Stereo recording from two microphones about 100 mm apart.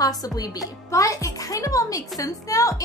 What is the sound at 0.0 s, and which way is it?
A woman's voice, 40° left (ahead or behind).